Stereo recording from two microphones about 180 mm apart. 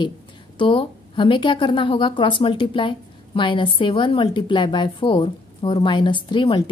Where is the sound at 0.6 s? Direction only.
30° left (ahead or behind).